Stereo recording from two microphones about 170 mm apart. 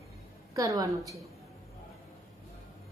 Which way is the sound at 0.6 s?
20° right (ahead or behind).